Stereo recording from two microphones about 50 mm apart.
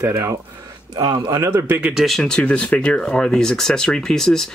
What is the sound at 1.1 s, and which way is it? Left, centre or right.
Speech, right.